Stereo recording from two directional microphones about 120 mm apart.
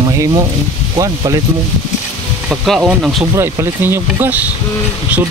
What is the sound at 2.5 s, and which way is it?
Speech, centre (ahead or behind).